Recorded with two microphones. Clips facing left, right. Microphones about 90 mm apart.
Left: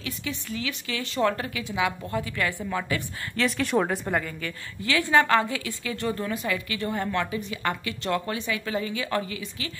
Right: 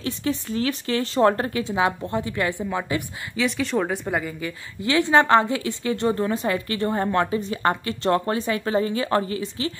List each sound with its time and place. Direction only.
0.0 s a woman's voice: 35° right (ahead or behind)
3.3 s speech: centre (ahead or behind)
4.2 s a woman's voice: 15° right (ahead or behind); by 9.7 s 35° right (ahead or behind)